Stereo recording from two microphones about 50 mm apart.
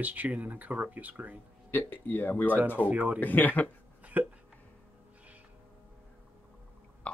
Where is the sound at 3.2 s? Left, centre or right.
Left.